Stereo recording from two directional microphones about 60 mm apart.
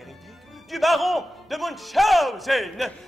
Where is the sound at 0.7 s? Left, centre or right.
Centre.